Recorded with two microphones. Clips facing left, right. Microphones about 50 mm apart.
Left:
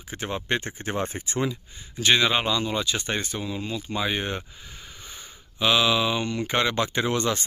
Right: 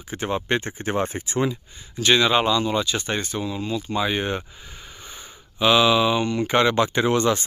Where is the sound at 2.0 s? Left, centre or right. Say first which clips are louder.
Right 3 dB; centre.